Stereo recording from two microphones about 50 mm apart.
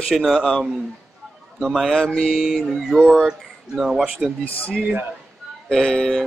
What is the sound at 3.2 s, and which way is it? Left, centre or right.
Speech, centre.